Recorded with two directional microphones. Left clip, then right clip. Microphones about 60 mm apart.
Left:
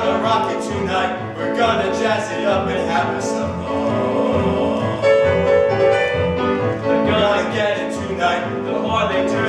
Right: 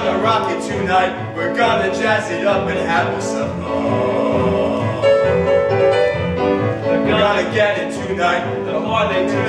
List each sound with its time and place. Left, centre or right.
5.0 s music: left